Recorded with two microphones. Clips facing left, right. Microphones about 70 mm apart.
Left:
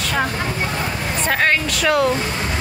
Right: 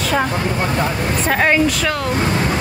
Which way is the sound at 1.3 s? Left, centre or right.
Centre.